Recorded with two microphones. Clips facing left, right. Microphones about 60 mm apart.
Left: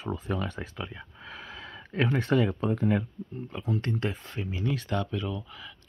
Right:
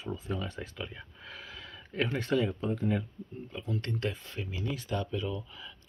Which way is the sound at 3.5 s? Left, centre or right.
Left.